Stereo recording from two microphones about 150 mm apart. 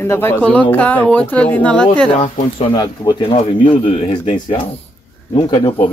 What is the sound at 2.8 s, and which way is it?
Speech, 30° left (ahead or behind).